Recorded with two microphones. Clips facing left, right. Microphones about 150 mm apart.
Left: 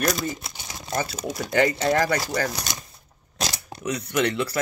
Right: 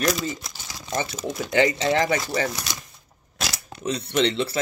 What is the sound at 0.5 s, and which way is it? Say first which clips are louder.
Crumpling: left 1 dB; 20° left (ahead or behind).